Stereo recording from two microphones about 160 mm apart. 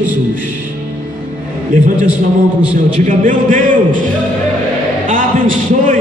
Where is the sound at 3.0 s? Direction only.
55° right (ahead or behind).